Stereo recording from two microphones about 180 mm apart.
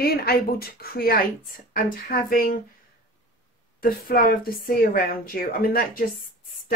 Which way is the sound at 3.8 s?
55° left (ahead or behind).